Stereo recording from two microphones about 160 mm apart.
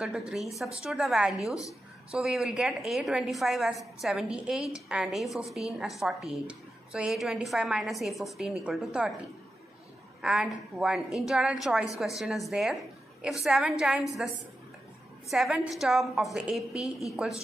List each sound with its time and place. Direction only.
0.3 s a woman's voice: centre (ahead or behind)
1.5 s speech: 20° left (ahead or behind)
2.0 s a woman's voice: 5° right (ahead or behind)
10.2 s a woman's voice: 5° right (ahead or behind)